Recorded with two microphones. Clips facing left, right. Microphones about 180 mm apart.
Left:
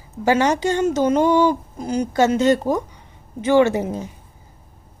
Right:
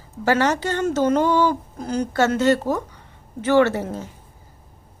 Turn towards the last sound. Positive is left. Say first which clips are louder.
# left 2 dB
turn(degrees=15)  # may be behind; listen again after turning